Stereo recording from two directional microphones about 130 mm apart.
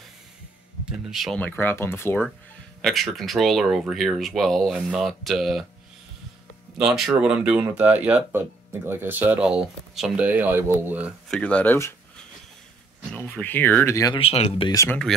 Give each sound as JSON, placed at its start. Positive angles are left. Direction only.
{"t": 0.8, "sound": "speech", "side_deg": 0}
{"t": 1.4, "sound": "speech", "side_deg": 15}
{"t": 2.8, "sound": "speech", "side_deg": 0}
{"t": 6.8, "sound": "speech", "side_deg": -5}
{"t": 11.2, "sound": "speech", "side_deg": 10}
{"t": 13.1, "sound": "speech", "side_deg": 10}
{"t": 14.1, "sound": "speech", "side_deg": 50}
{"t": 14.9, "sound": "speech", "side_deg": 5}